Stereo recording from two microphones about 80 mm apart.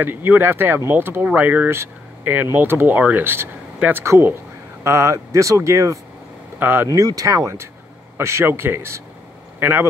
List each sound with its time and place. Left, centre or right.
0.0 s speech: right
6.6 s speech: right
6.9 s speech: right